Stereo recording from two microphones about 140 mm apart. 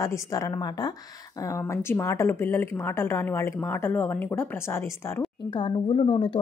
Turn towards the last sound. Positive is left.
turn(degrees=35)  # may be behind; listen again after turning